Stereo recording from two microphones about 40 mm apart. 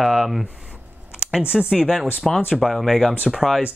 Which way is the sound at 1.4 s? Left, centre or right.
Right.